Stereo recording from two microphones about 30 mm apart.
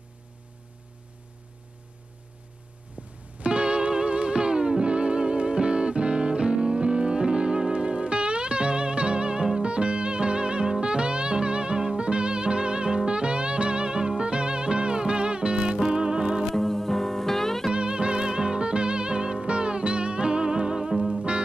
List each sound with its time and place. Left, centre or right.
3.0 s music: right
16.4 s music: centre
17.7 s music: right